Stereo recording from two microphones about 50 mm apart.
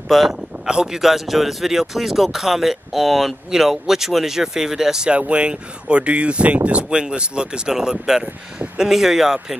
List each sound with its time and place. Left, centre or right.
0.3 s speech: centre